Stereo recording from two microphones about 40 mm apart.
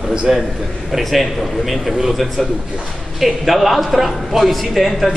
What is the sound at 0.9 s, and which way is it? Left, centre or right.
A man's voice, centre.